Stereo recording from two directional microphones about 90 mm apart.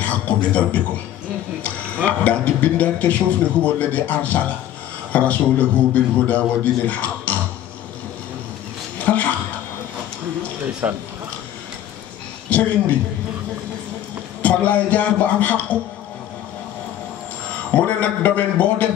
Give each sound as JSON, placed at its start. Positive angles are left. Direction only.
{"t": 0.0, "sound": "a sound", "side_deg": 15}
{"t": 1.6, "sound": "a man's voice", "side_deg": 15}
{"t": 8.9, "sound": "a sound", "side_deg": 15}
{"t": 10.8, "sound": "speech", "side_deg": -20}
{"t": 12.5, "sound": "a man's voice", "side_deg": 15}
{"t": 14.4, "sound": "a man's voice", "side_deg": 15}
{"t": 17.7, "sound": "a man's voice", "side_deg": 15}